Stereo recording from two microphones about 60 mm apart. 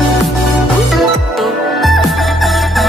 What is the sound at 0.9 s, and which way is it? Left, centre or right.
Music, centre.